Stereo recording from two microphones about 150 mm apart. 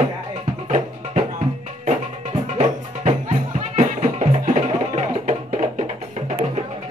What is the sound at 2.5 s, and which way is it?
Music, 50° right (ahead or behind).